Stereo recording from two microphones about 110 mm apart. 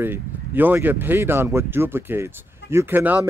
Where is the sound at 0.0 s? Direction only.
20° right (ahead or behind).